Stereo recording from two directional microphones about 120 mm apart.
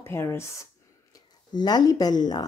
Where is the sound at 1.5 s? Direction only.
35° left (ahead or behind).